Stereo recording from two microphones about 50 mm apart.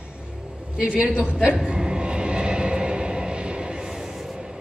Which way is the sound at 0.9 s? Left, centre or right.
Right.